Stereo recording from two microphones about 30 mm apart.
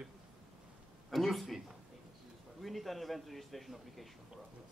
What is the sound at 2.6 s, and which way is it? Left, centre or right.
A man's voice, centre.